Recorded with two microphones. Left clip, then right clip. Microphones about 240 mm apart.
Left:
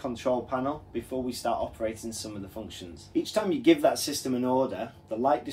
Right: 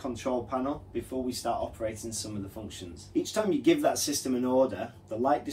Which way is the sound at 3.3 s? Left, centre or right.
Left.